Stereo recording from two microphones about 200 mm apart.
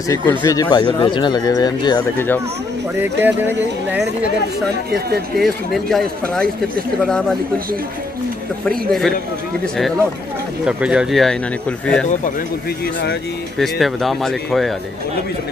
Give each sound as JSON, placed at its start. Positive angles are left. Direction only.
{"t": 0.1, "sound": "speech", "side_deg": 15}
{"t": 3.0, "sound": "speech", "side_deg": -10}
{"t": 5.4, "sound": "speech", "side_deg": 0}
{"t": 8.6, "sound": "speech", "side_deg": 0}
{"t": 10.6, "sound": "speech", "side_deg": -5}
{"t": 12.8, "sound": "speech", "side_deg": 55}
{"t": 13.6, "sound": "speech", "side_deg": 0}